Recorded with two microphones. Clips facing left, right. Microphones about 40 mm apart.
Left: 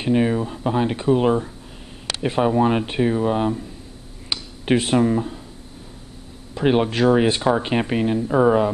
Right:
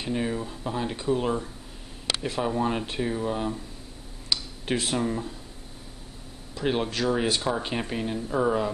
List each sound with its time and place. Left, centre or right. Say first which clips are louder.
0.0 s speech: left 9 dB; left
6.5 s speech: left 8 dB; left